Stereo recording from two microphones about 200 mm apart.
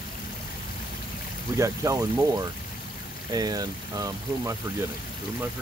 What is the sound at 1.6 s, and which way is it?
Speech, 15° right (ahead or behind).